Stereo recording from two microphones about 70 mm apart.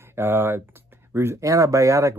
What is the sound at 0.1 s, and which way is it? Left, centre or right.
Speech, right.